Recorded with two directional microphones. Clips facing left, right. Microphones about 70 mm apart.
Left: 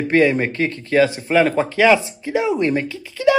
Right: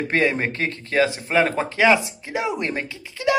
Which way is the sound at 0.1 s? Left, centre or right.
Right.